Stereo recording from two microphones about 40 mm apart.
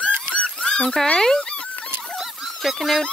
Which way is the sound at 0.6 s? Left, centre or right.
Centre.